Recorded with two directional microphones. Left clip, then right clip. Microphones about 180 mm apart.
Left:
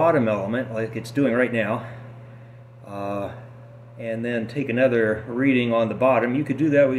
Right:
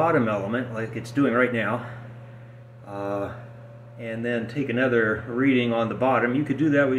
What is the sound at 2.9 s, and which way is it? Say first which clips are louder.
Speech: even; 20° left (ahead or behind).